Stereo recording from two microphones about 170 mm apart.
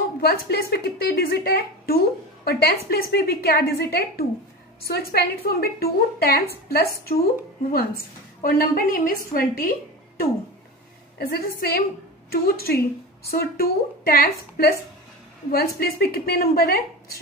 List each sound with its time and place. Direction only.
0.2 s a woman's voice: 65° left (ahead or behind)
11.1 s a woman's voice: 60° left (ahead or behind)